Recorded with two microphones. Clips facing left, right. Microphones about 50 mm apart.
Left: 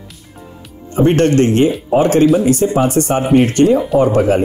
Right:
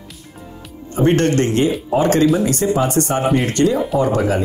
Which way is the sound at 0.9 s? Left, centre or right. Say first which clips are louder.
Left 4 dB; left.